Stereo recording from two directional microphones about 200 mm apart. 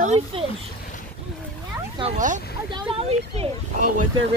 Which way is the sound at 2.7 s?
25° right (ahead or behind).